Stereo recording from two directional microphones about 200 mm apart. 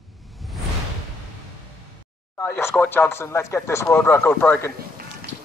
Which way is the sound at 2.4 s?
10° left (ahead or behind).